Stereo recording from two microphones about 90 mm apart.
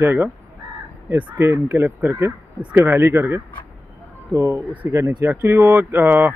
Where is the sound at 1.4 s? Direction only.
25° right (ahead or behind).